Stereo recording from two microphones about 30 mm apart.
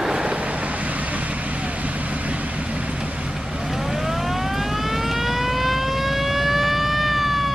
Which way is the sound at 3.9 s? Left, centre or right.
Centre.